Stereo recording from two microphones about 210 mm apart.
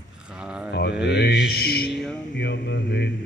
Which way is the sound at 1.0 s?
50° left (ahead or behind).